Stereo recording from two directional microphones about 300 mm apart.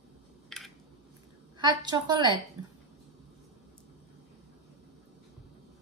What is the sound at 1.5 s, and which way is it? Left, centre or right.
Speech, centre.